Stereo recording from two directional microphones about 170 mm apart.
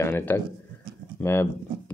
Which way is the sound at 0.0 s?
10° left (ahead or behind).